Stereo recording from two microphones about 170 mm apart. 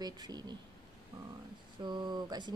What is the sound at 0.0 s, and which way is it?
Speech, 25° right (ahead or behind).